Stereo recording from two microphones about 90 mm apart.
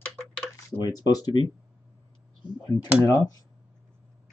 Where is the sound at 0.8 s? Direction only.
45° left (ahead or behind).